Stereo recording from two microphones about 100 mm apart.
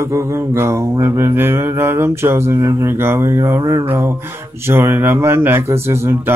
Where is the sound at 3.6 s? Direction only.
35° right (ahead or behind).